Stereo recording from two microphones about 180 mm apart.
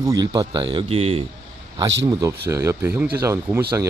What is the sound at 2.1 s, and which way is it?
Speech, 20° right (ahead or behind).